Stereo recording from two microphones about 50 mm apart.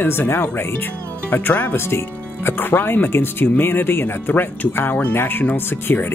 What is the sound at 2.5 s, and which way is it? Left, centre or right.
Speech, left.